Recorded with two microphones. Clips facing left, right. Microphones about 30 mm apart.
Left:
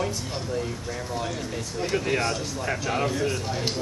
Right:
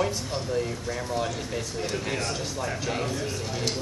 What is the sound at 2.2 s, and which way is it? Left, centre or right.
A man's voice, centre.